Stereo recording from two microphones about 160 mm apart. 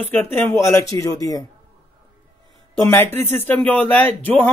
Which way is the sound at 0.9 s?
20° left (ahead or behind).